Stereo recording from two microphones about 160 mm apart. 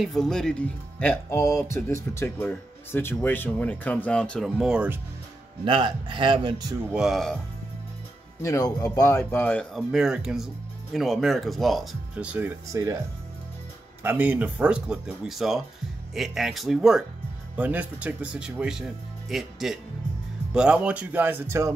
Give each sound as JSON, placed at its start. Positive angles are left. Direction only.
{"t": 0.0, "sound": "speech", "side_deg": 0}
{"t": 5.7, "sound": "a man's voice", "side_deg": -30}
{"t": 6.9, "sound": "speech", "side_deg": 0}
{"t": 8.4, "sound": "speech", "side_deg": 20}
{"t": 9.8, "sound": "speech", "side_deg": -5}
{"t": 14.0, "sound": "speech", "side_deg": -10}